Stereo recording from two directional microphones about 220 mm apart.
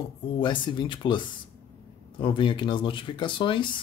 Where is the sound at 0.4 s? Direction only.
20° left (ahead or behind).